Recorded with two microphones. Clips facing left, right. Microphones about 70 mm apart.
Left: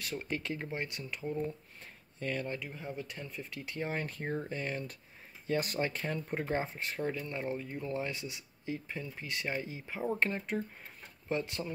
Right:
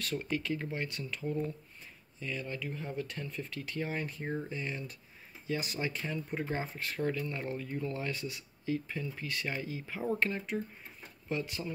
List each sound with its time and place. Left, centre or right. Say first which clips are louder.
0.0 s speech: right 3 dB; centre
0.3 s speech: right 1 dB; left
2.1 s speech: left 3 dB; left
2.6 s speech: right 3 dB; centre
4.0 s speech: even; left
6.4 s speech: left 2 dB; left